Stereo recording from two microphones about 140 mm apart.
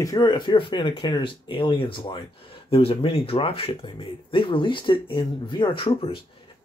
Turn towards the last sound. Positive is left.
turn(degrees=40)  # may be behind; listen again after turning